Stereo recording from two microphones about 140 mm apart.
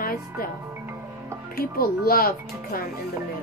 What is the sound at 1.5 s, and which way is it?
Speech, 90° left.